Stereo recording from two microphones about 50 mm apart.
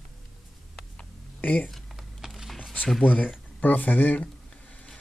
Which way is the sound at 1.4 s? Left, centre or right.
Left.